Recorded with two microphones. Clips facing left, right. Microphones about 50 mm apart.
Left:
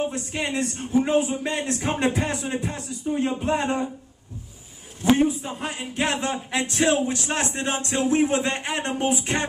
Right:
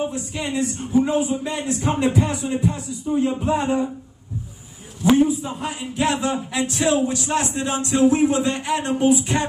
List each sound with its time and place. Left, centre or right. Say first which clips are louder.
0.1 s a man's voice: right 1 dB; left
5.1 s a man's voice: right 3 dB; left